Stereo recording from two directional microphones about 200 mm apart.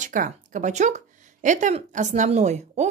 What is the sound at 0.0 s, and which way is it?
Speech, 40° right (ahead or behind).